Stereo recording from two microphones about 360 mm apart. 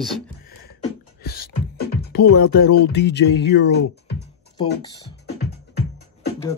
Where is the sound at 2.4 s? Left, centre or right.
Left.